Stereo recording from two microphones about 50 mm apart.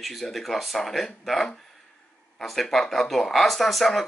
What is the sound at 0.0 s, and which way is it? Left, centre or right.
Speech, centre.